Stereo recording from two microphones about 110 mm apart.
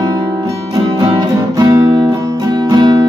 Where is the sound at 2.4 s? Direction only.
40° right (ahead or behind).